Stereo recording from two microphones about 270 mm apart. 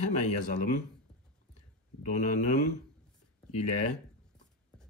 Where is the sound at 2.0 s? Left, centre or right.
Left.